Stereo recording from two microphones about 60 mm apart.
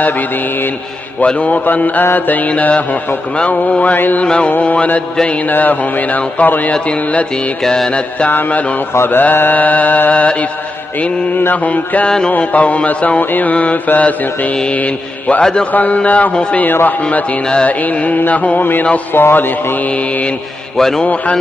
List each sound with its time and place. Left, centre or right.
1.2 s mantra: centre
5.5 s mantra: left
7.6 s mantra: centre
8.3 s mantra: left
8.9 s speech: left
9.2 s mantra: left
16.6 s speech: left
17.0 s mantra: left
19.1 s speech: left
19.9 s mantra: left
20.7 s a man's voice: centre
21.0 s mantra: left